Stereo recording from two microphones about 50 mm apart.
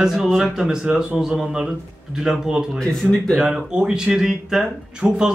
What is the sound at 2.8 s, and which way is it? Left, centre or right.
Speech, centre.